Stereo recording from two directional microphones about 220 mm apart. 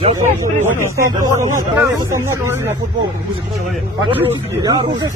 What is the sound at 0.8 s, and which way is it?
Speech, 15° right (ahead or behind).